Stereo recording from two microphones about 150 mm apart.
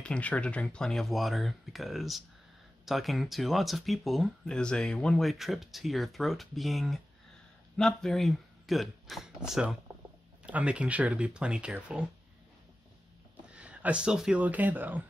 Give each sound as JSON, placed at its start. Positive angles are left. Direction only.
{"t": 0.0, "sound": "speech", "side_deg": 10}
{"t": 13.5, "sound": "speech", "side_deg": -5}